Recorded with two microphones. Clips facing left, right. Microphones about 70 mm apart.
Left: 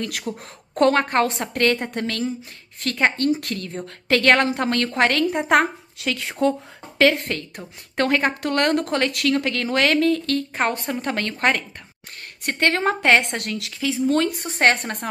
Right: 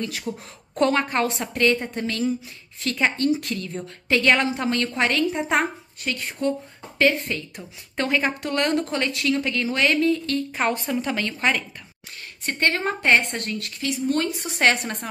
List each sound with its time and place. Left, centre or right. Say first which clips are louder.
0.3 s a woman's voice: left 1 dB; centre
0.7 s a woman's voice: left 3 dB; left
10.5 s a woman's voice: even; left
12.4 s a woman's voice: left 3 dB; left
14.6 s a woman's voice: left 2 dB; left